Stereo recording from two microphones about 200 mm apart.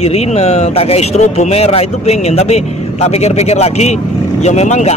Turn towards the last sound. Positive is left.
turn(degrees=35)  # may be behind; listen again after turning